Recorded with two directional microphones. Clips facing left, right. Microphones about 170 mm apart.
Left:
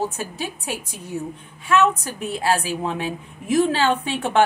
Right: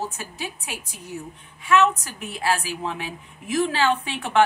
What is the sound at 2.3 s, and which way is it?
A woman's voice, 30° left (ahead or behind).